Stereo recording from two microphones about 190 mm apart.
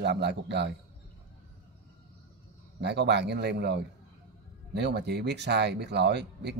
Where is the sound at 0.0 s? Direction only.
60° right (ahead or behind).